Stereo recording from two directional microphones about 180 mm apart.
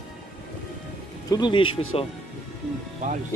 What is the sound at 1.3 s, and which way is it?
Speech, 25° left (ahead or behind).